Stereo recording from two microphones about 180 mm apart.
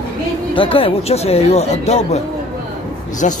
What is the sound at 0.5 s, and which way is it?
Speech, 30° left (ahead or behind).